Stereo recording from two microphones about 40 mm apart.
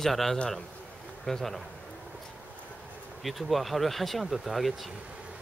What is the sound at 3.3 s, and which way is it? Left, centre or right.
Speech, centre.